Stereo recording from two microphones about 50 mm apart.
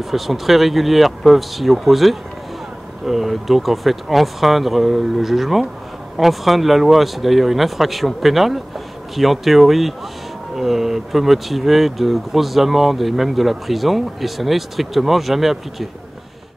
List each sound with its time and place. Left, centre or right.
0.0 s speech: centre